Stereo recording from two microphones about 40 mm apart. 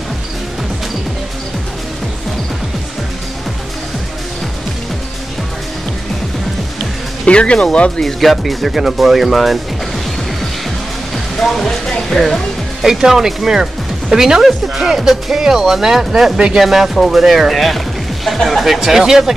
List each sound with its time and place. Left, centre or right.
7.2 s speech: left
8.0 s speech: centre
11.4 s music: centre
11.8 s music: centre
12.8 s speech: centre